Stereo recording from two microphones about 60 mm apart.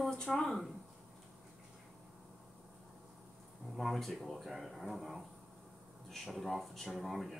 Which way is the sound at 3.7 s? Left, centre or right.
Centre.